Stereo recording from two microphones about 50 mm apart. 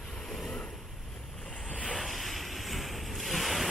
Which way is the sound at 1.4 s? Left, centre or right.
Centre.